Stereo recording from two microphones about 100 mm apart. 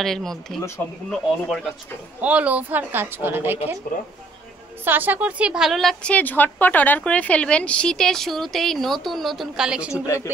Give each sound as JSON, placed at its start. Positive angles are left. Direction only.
{"t": 0.0, "sound": "speech", "side_deg": 5}
{"t": 2.2, "sound": "a woman's voice", "side_deg": -15}
{"t": 4.8, "sound": "a woman's voice", "side_deg": -20}
{"t": 6.1, "sound": "speech", "side_deg": 20}
{"t": 10.0, "sound": "speech", "side_deg": 30}